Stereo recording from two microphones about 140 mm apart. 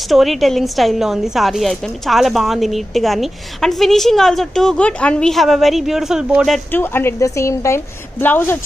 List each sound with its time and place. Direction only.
0.1 s a woman's voice: centre (ahead or behind)
6.7 s a woman's voice: 15° left (ahead or behind)